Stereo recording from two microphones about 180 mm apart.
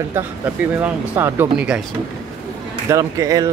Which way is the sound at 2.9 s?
20° right (ahead or behind).